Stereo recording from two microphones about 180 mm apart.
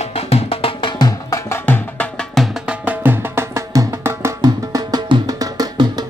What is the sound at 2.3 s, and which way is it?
Music, 5° right (ahead or behind).